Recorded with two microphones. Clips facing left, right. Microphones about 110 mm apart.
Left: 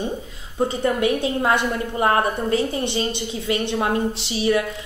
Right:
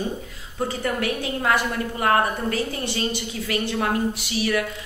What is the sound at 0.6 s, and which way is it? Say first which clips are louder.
A woman's voice: left 5 dB; 20° left (ahead or behind).